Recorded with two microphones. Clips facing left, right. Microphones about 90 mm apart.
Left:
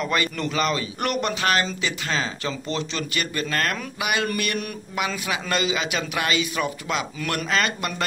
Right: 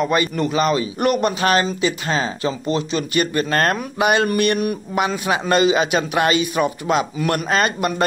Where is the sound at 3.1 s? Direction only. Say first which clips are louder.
Right 9 dB; 30° right (ahead or behind).